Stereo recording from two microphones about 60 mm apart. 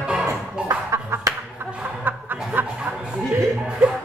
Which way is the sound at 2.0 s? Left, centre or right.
Right.